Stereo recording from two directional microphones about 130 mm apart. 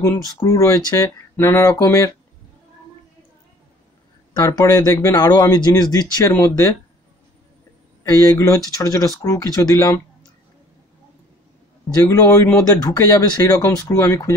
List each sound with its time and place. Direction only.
0.0 s speech: 20° left (ahead or behind)
4.3 s speech: 25° left (ahead or behind)
8.0 s speech: 25° left (ahead or behind)
12.1 s speech: 20° left (ahead or behind)